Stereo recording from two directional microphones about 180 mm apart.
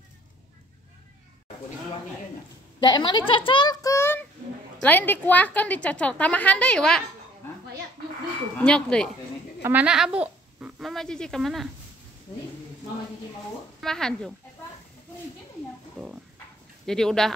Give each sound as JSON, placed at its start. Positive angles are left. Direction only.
{"t": 2.8, "sound": "a child's voice", "side_deg": 25}
{"t": 8.5, "sound": "speech", "side_deg": 5}
{"t": 9.6, "sound": "speech", "side_deg": -10}
{"t": 13.7, "sound": "speech", "side_deg": 5}
{"t": 16.8, "sound": "speech", "side_deg": 5}